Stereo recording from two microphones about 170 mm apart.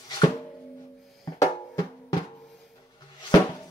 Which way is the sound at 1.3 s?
20° left (ahead or behind).